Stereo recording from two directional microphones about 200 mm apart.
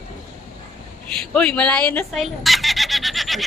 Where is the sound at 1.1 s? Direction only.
5° left (ahead or behind).